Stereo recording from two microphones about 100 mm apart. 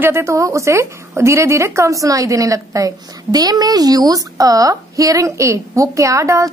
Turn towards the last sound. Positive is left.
turn(degrees=-30)  # may be behind; listen again after turning